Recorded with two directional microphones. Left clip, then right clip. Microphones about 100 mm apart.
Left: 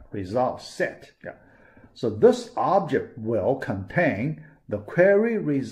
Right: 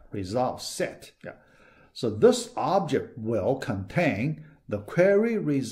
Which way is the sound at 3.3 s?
35° right (ahead or behind).